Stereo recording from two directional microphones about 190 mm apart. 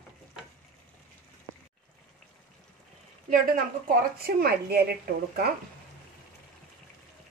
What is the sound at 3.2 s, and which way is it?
Speech, 50° right (ahead or behind).